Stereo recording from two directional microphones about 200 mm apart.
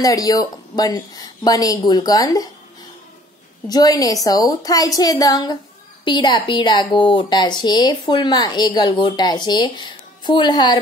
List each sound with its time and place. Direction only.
0.0 s speech: 15° left (ahead or behind)
3.6 s a woman's voice: 20° left (ahead or behind)